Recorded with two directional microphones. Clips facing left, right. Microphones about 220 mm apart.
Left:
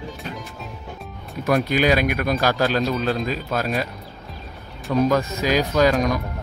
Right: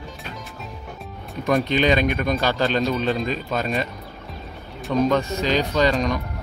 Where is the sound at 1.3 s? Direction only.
5° left (ahead or behind).